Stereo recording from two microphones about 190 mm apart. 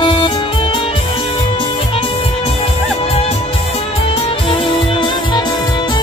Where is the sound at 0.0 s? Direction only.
25° left (ahead or behind).